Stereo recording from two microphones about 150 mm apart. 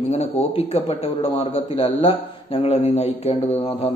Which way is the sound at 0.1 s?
45° left (ahead or behind).